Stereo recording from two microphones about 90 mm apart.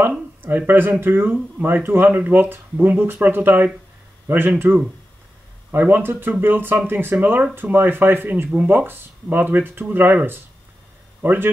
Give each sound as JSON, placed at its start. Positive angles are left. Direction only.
{"t": 0.4, "sound": "speech", "side_deg": -20}